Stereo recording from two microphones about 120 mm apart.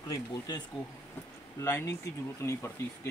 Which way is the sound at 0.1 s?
30° left (ahead or behind).